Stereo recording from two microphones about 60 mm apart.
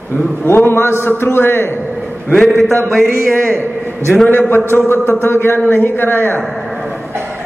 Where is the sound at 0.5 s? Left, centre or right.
Left.